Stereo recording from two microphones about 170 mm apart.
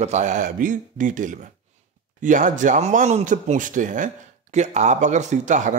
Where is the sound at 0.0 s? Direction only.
45° right (ahead or behind).